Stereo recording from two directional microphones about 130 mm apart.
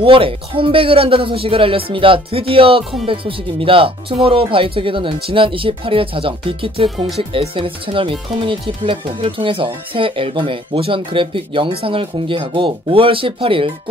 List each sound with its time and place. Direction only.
0.0 s speech: 45° right (ahead or behind)